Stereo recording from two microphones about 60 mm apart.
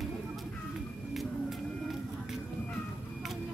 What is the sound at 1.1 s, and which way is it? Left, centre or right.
Music, centre.